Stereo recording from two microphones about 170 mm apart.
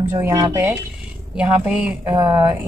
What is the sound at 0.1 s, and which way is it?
Speech, 20° right (ahead or behind).